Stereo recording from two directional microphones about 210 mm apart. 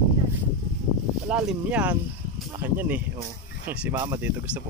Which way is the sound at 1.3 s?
5° right (ahead or behind).